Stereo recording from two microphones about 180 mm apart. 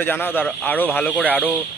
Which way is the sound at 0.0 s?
10° left (ahead or behind).